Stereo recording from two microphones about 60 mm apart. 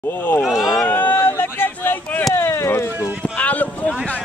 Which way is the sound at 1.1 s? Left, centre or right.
Left.